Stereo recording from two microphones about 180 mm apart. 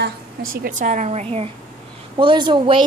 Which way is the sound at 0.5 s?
50° right (ahead or behind).